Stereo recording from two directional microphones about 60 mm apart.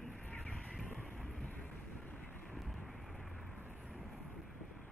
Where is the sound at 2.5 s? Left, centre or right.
Centre.